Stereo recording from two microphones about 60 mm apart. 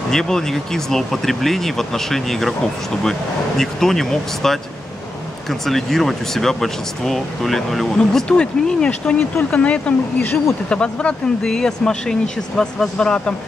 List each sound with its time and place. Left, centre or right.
0.1 s speech: centre